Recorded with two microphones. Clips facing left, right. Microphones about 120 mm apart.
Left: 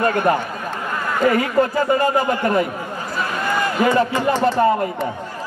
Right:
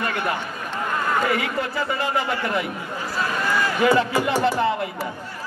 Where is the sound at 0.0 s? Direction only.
40° left (ahead or behind).